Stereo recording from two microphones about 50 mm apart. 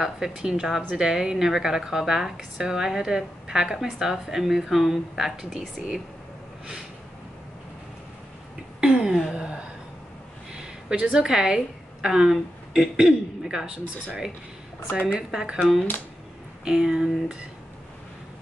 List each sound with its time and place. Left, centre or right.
0.0 s speech: centre
8.8 s a sound: centre
11.0 s speech: right
14.9 s a woman's voice: left
15.1 s speech: centre